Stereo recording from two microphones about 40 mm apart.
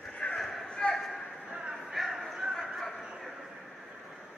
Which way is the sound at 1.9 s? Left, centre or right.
Centre.